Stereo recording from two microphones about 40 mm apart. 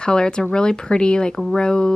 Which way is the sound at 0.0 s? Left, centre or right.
Left.